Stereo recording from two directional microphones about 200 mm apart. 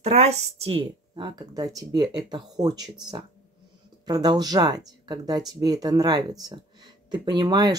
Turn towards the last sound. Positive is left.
turn(degrees=-20)  # may be behind; listen again after turning